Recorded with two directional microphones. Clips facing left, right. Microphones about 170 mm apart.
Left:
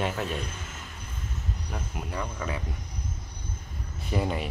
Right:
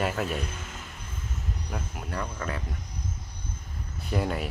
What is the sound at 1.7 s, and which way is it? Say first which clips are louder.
Speech: even; centre (ahead or behind).